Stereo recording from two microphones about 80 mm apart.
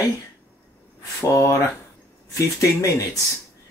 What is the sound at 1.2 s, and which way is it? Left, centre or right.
Speech, left.